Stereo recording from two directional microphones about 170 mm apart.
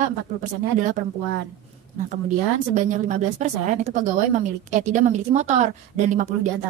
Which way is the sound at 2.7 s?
45° right (ahead or behind).